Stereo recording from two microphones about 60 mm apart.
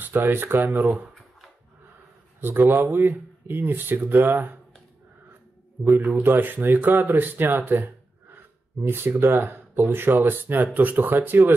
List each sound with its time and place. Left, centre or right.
0.0 s speech: right
2.4 s speech: right
5.9 s speech: right